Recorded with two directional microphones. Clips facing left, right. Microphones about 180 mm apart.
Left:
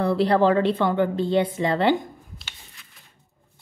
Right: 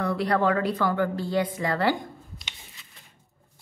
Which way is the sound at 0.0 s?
30° left (ahead or behind).